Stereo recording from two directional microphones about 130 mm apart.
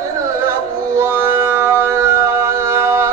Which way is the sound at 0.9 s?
20° right (ahead or behind).